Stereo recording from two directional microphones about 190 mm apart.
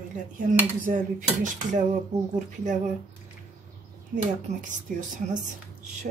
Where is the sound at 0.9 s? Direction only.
40° right (ahead or behind).